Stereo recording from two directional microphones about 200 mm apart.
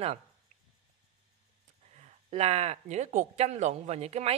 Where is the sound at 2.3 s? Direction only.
35° right (ahead or behind).